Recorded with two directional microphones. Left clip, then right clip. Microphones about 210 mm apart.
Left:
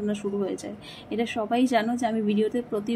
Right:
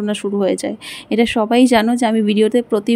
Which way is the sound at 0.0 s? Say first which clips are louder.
Right 10 dB; 45° right (ahead or behind).